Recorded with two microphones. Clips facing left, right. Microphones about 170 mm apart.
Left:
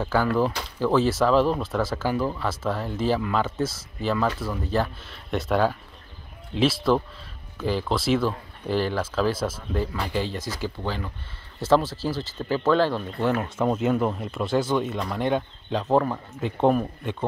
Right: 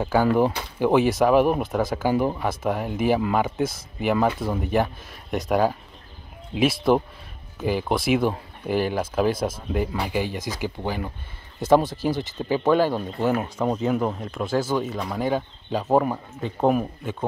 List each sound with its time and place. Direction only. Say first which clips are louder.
0.0 s speech: right 3 dB; 15° right (ahead or behind)
13.6 s speech: even; 5° left (ahead or behind)